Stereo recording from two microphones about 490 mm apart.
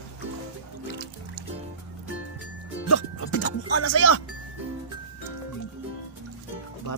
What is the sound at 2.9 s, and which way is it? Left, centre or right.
Music, left.